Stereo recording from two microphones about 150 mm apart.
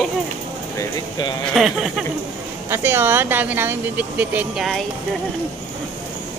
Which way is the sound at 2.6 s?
15° right (ahead or behind).